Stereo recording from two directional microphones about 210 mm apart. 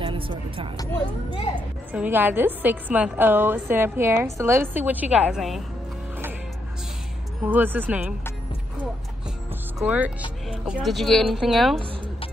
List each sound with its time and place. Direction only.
0.0 s a woman's voice: 25° right (ahead or behind)
1.9 s a woman's voice: 10° right (ahead or behind)
7.4 s a woman's voice: 10° right (ahead or behind)
9.8 s a woman's voice: 5° right (ahead or behind)